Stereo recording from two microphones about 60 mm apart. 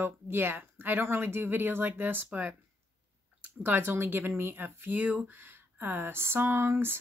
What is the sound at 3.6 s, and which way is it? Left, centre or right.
Speech, right.